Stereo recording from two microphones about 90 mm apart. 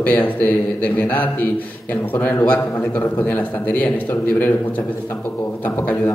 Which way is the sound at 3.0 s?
20° left (ahead or behind).